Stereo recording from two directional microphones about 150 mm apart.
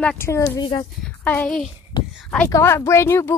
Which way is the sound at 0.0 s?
10° left (ahead or behind).